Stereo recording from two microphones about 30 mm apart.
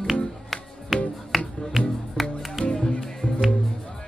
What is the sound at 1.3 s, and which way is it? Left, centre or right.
Music, centre.